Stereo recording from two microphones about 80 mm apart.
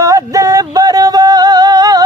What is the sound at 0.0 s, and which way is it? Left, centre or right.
Music, right.